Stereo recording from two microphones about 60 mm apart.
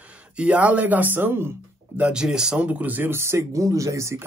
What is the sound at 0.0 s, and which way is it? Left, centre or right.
Speech, right.